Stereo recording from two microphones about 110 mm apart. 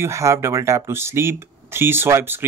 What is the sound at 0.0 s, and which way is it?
Speech, 25° right (ahead or behind).